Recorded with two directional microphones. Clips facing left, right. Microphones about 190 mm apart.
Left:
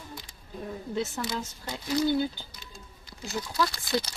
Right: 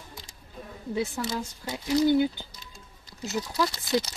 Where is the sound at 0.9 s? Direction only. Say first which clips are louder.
Right 3 dB; 10° right (ahead or behind).